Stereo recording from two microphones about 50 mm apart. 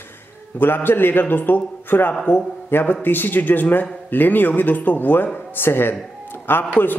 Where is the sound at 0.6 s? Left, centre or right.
Left.